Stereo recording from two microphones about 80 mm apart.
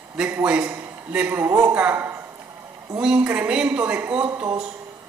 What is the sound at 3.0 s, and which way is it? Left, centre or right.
A woman's voice, centre.